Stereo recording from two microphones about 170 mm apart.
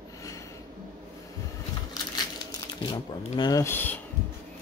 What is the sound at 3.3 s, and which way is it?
Speech, 25° left (ahead or behind).